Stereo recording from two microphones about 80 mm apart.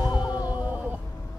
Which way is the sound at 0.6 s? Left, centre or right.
Centre.